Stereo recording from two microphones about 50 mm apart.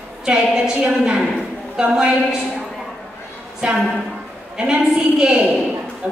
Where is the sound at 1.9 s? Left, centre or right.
Centre.